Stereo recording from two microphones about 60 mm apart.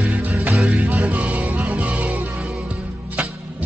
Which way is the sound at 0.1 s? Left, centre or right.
Right.